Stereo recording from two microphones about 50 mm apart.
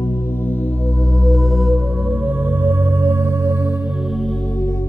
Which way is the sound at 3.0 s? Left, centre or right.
Right.